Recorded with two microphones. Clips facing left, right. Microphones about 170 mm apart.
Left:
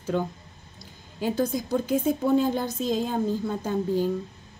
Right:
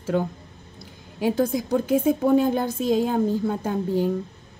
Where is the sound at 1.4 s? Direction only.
60° right (ahead or behind).